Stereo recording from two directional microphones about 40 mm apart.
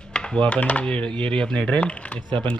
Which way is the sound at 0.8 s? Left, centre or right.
Left.